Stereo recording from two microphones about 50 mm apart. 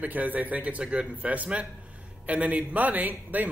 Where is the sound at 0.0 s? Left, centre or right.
Right.